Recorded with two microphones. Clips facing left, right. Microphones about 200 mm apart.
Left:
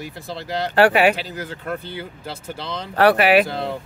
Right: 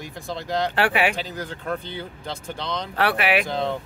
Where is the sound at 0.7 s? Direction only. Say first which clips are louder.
Left 10 dB; 40° left (ahead or behind).